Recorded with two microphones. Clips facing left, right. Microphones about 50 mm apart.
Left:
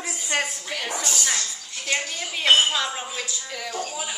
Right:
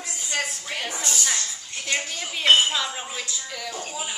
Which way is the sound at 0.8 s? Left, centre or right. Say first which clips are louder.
Left 3 dB; centre.